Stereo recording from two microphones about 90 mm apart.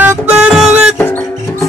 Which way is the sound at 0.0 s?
20° right (ahead or behind).